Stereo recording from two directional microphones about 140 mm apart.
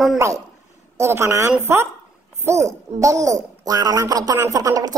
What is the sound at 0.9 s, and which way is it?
Speech, 20° right (ahead or behind).